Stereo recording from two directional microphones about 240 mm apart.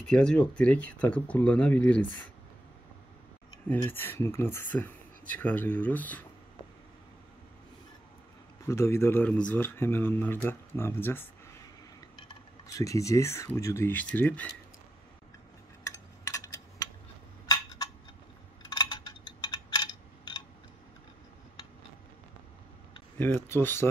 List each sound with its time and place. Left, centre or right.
0.0 s speech: centre
3.6 s speech: centre
8.6 s speech: centre
15.8 s a sound: centre
23.1 s speech: centre